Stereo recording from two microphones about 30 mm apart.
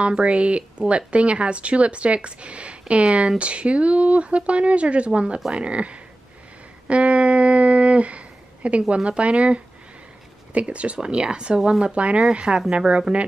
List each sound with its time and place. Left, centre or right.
0.0 s speech: right
3.0 s speech: right
3.3 s speech: right
6.9 s a sound: right
8.8 s speech: right
11.1 s speech: right